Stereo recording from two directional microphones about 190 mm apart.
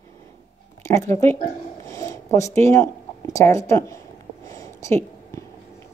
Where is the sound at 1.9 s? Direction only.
15° left (ahead or behind).